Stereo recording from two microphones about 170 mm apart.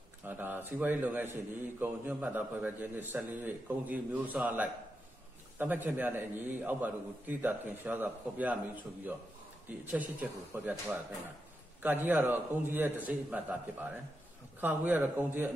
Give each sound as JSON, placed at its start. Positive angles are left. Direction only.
{"t": 0.2, "sound": "a man's voice", "side_deg": -10}